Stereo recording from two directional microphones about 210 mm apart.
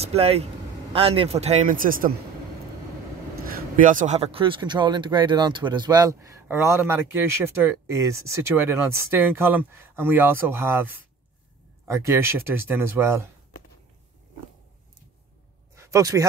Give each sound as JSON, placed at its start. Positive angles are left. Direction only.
{"t": 0.0, "sound": "a man's voice", "side_deg": -30}
{"t": 3.7, "sound": "speech", "side_deg": -40}
{"t": 15.7, "sound": "a sound", "side_deg": -15}